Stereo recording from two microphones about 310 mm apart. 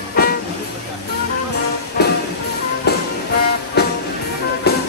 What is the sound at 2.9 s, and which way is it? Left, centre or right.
Music, left.